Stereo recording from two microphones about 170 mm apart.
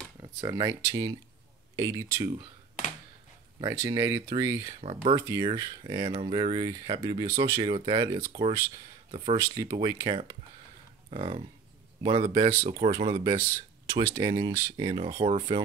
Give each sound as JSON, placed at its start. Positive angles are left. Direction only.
{"t": 0.2, "sound": "speech", "side_deg": -20}
{"t": 3.6, "sound": "speech", "side_deg": -25}
{"t": 7.7, "sound": "speech", "side_deg": -30}
{"t": 9.4, "sound": "speech", "side_deg": -20}
{"t": 13.8, "sound": "speech", "side_deg": -25}